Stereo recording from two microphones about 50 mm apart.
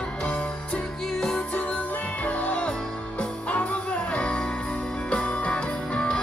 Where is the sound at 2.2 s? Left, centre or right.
Left.